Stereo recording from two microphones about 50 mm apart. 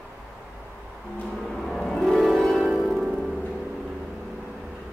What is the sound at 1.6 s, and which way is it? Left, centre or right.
Music, centre.